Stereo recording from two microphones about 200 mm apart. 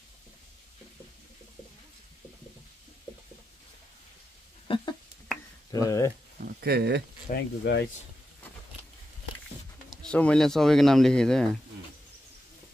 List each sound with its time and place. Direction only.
4.6 s a sound: 25° left (ahead or behind)
5.7 s speech: 15° left (ahead or behind)
6.4 s speech: 50° right (ahead or behind)
7.2 s speech: 55° left (ahead or behind)
9.8 s speech: 5° left (ahead or behind)